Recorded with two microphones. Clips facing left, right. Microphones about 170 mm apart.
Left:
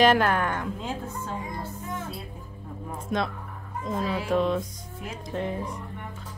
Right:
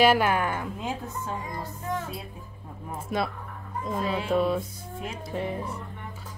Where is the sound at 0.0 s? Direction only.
10° right (ahead or behind).